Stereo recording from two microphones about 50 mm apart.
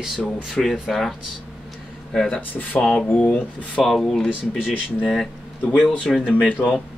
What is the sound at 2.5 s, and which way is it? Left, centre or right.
Speech, left.